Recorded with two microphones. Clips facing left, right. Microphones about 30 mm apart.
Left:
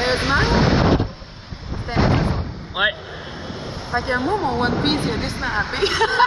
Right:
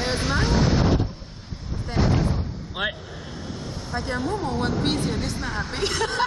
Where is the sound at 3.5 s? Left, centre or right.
Left.